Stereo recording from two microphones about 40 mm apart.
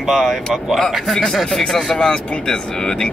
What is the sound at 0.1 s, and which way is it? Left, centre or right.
Speech, centre.